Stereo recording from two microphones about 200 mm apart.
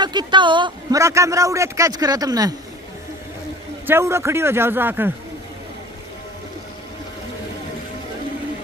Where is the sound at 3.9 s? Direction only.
15° right (ahead or behind).